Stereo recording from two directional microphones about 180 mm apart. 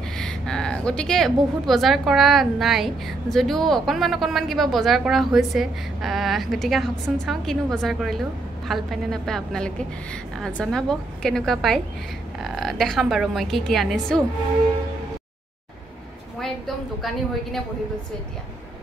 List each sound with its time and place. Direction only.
0.2 s a woman's voice: 5° left (ahead or behind)
16.3 s a woman's voice: centre (ahead or behind)